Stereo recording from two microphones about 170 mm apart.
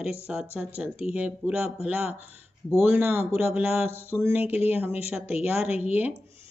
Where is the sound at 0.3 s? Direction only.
5° right (ahead or behind).